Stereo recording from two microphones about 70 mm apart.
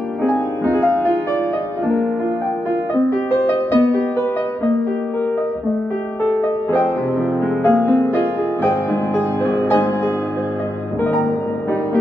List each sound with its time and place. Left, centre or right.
0.2 s music: left
3.3 s music: left
7.6 s music: left